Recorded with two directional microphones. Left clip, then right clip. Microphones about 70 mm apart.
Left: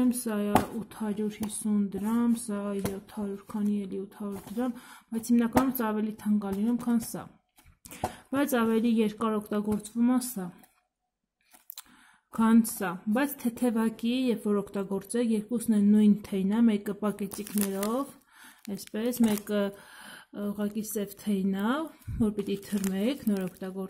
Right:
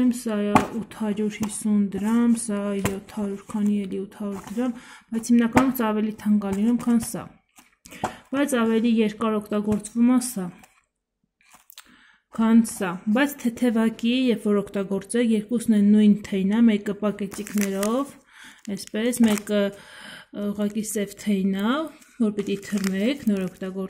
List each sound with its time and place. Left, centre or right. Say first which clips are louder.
0.0 s speech: right 5 dB; left
0.8 s speech: right 6 dB; centre
2.9 s a sound: right 6 dB; centre
3.6 s speech: right 6 dB; centre
4.6 s speech: right 4 dB; centre
5.7 s speech: right 6 dB; centre
7.9 s speech: right 4 dB; left; by 9.8 s centre
9.8 s speech: right 7 dB; centre
12.3 s speech: right 4 dB; left
12.8 s speech: right 6 dB; centre
17.0 s speech: right 6 dB; left
17.6 s speech: right 6 dB; centre
22.2 s speech: right 5 dB; left; by 23.9 s centre